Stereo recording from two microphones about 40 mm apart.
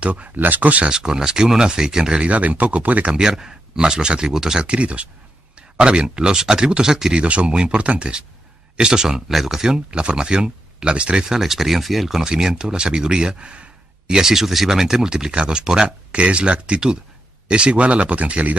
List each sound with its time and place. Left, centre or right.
0.0 s speech: right
0.4 s speech: right
0.8 s speech: centre
2.2 s speech: right
3.1 s speech: centre
4.6 s speech: right; by 7.2 s centre
7.2 s speech: right; by 9.8 s centre
9.8 s speech: right
11.2 s speech: centre; by 13.7 s right
14.0 s speech: centre; by 18.6 s right